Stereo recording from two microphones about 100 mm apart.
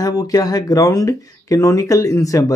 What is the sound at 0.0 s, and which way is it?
Speech, 40° left (ahead or behind).